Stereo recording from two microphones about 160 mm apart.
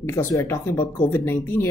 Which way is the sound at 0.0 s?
15° left (ahead or behind).